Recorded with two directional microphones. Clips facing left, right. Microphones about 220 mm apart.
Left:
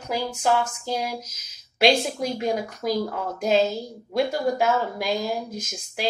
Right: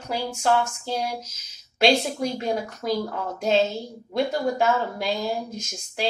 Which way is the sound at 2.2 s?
10° left (ahead or behind).